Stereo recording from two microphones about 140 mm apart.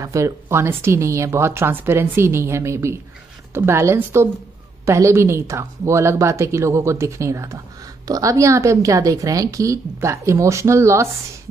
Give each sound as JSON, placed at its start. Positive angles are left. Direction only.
{"t": 0.0, "sound": "a woman's voice", "side_deg": -20}